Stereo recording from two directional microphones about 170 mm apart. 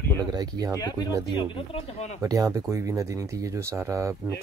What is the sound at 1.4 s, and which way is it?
Speech, 30° left (ahead or behind).